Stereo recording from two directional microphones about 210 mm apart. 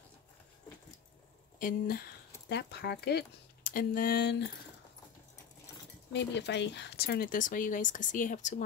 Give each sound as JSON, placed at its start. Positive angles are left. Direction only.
{"t": 1.6, "sound": "speech", "side_deg": 45}
{"t": 6.1, "sound": "speech", "side_deg": 55}